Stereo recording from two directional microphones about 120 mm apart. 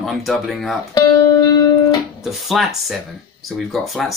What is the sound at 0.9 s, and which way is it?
Music, 35° left (ahead or behind).